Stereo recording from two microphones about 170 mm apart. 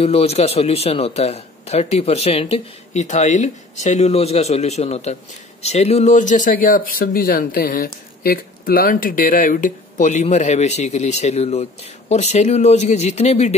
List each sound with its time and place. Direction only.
0.0 s a man's voice: 35° left (ahead or behind)